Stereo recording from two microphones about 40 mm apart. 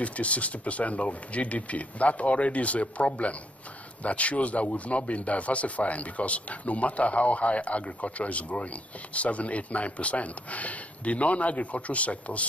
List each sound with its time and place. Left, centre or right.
0.0 s a man's voice: left